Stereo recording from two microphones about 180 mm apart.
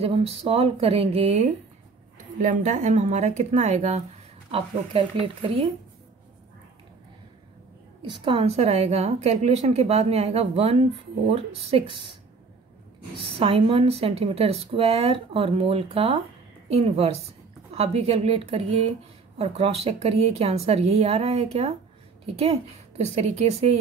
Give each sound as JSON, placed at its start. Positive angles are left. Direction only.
{"t": 0.0, "sound": "a woman's voice", "side_deg": -35}
{"t": 8.0, "sound": "a woman's voice", "side_deg": -30}
{"t": 13.4, "sound": "a woman's voice", "side_deg": -30}